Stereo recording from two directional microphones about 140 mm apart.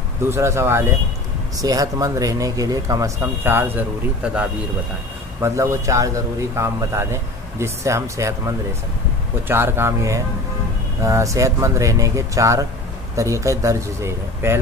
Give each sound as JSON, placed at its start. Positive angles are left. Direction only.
{"t": 0.2, "sound": "speech", "side_deg": -20}
{"t": 3.2, "sound": "speech", "side_deg": -15}
{"t": 5.4, "sound": "speech", "side_deg": -20}
{"t": 9.5, "sound": "speech", "side_deg": -15}